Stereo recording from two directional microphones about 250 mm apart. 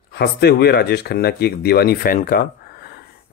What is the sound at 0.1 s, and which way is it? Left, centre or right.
A man's voice, left.